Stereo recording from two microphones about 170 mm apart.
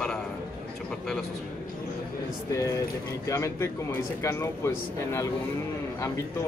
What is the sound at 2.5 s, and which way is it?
Speech, 20° left (ahead or behind).